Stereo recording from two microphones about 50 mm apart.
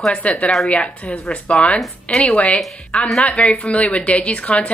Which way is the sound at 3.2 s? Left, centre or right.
Left.